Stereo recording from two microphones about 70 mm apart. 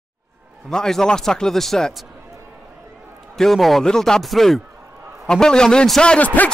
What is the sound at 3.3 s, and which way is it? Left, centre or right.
A man's voice, centre.